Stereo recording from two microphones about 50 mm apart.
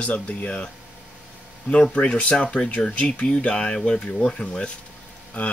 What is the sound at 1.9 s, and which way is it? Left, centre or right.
Speech, left.